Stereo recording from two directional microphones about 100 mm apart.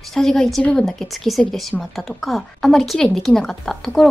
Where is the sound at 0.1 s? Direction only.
5° left (ahead or behind).